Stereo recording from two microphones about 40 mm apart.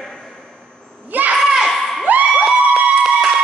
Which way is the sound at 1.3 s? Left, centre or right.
Centre.